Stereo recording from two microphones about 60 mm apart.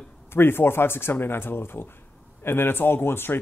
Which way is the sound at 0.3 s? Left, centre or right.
Left.